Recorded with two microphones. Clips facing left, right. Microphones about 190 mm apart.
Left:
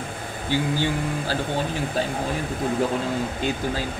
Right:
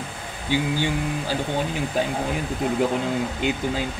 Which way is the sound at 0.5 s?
15° right (ahead or behind).